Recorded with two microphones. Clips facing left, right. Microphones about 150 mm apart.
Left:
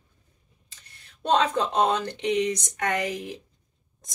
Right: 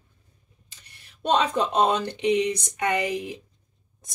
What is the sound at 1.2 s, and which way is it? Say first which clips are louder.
Speech: even; 15° right (ahead or behind).